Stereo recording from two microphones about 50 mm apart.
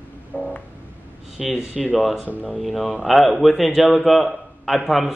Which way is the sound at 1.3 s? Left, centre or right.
Centre.